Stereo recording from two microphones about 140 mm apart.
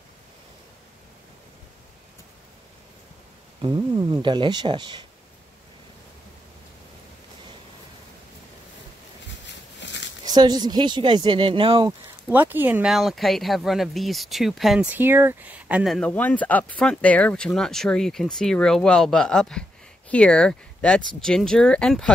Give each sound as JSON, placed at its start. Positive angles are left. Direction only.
{"t": 3.6, "sound": "speech", "side_deg": -30}
{"t": 10.2, "sound": "speech", "side_deg": -30}
{"t": 12.3, "sound": "speech", "side_deg": -15}
{"t": 12.8, "sound": "speech", "side_deg": 0}
{"t": 14.9, "sound": "speech", "side_deg": -15}
{"t": 15.9, "sound": "speech", "side_deg": 5}